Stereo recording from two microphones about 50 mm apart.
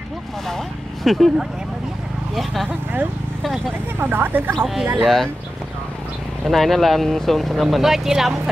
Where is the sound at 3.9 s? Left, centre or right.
Right.